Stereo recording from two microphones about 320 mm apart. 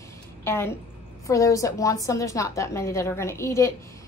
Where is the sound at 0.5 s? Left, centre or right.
Centre.